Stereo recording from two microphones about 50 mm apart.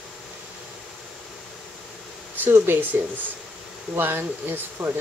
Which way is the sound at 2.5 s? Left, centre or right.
Right.